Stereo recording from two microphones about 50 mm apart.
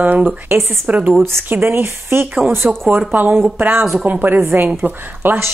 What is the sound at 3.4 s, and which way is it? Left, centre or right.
Speech, right.